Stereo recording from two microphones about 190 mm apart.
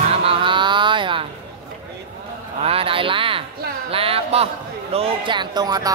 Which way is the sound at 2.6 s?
30° right (ahead or behind).